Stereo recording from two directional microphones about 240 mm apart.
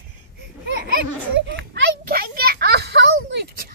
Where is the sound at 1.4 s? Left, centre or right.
Right.